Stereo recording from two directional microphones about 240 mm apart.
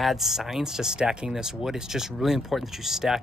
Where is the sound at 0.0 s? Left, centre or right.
Centre.